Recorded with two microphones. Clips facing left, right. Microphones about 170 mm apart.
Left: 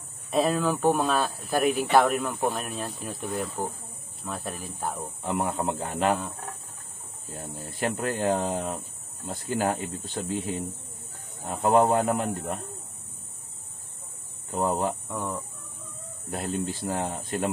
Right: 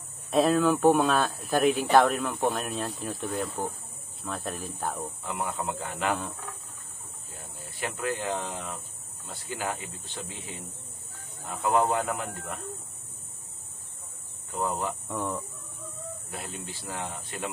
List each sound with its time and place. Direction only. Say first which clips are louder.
0.3 s speech: right 2 dB; centre (ahead or behind)
2.4 s speech: even; centre (ahead or behind)
5.2 s speech: left 6 dB; 40° left (ahead or behind)
7.3 s speech: left 8 dB; 40° left (ahead or behind)
14.5 s speech: left 4 dB; 35° left (ahead or behind)
15.0 s speech: even; centre (ahead or behind)
16.3 s speech: left 13 dB; 40° left (ahead or behind)